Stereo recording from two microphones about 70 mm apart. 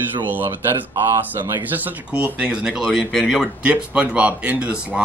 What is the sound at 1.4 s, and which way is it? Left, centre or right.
A man's voice, right.